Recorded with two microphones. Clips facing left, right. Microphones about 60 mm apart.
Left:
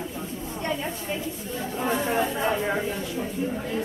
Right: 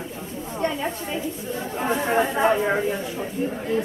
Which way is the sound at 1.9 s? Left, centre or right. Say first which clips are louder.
Right 3 dB; right.